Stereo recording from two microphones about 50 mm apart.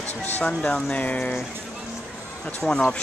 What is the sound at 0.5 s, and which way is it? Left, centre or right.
Speech, centre.